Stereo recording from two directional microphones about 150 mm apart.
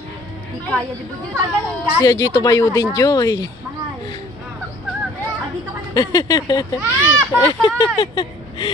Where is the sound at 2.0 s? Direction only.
20° left (ahead or behind).